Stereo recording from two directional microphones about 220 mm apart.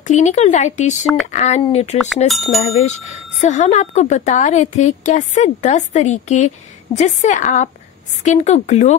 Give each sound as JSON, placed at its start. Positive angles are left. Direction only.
{"t": 0.0, "sound": "a woman's voice", "side_deg": 35}
{"t": 2.2, "sound": "speech", "side_deg": 0}
{"t": 3.3, "sound": "a woman's voice", "side_deg": 30}